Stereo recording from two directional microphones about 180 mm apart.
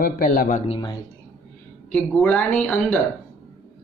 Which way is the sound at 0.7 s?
25° left (ahead or behind).